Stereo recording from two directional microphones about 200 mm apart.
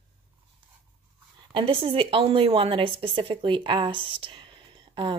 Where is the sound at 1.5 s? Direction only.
25° right (ahead or behind).